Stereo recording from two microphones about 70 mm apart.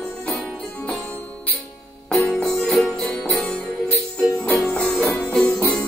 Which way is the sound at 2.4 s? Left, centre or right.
Centre.